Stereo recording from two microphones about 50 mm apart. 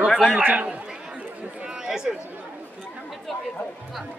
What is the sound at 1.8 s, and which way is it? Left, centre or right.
Chatter, centre.